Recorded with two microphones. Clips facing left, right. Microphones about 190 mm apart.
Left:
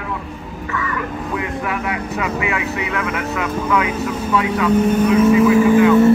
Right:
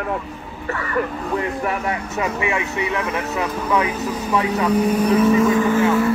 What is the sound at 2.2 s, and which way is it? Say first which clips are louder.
Vehicle: even; 30° right (ahead or behind).